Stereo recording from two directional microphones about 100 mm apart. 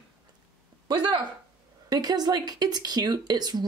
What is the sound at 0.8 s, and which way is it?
Speech, 45° right (ahead or behind).